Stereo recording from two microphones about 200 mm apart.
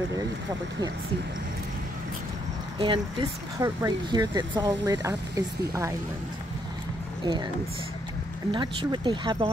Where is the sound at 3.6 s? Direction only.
20° right (ahead or behind).